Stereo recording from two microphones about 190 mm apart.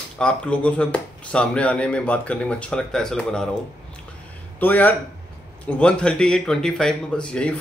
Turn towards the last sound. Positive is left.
turn(degrees=5)  # may be behind; listen again after turning